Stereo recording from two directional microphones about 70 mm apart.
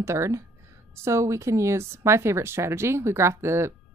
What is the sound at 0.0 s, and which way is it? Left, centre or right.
A woman's voice, right.